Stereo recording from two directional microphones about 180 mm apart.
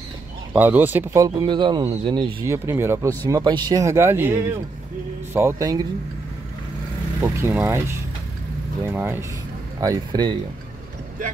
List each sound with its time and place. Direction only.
0.5 s speech: 10° right (ahead or behind)
7.2 s speech: 15° right (ahead or behind)